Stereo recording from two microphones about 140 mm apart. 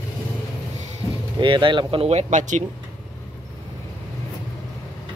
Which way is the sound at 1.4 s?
35° right (ahead or behind).